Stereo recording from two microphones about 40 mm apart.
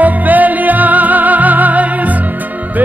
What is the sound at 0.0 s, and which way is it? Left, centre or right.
Music, right.